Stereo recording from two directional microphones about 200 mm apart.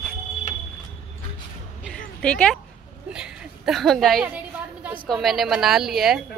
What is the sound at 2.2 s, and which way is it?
Speech, 5° left (ahead or behind).